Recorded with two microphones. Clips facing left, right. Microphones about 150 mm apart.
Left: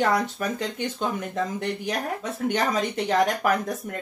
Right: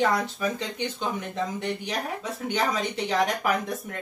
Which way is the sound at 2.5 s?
45° left (ahead or behind).